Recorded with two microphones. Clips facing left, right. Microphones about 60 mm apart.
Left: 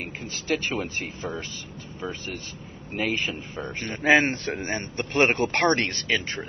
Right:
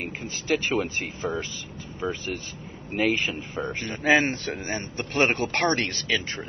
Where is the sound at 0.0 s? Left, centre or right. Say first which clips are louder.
Right 1 dB; centre.